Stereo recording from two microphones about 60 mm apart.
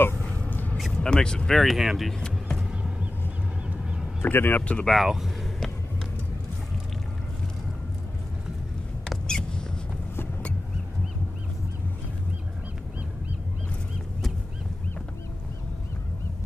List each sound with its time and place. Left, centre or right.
0.0 s a sound: left
1.0 s speech: centre
1.5 s speech: centre
2.1 s music: centre
3.6 s a sound: centre
4.2 s speech: left
4.6 s speech: left
5.0 s speech: centre
9.3 s rodents: centre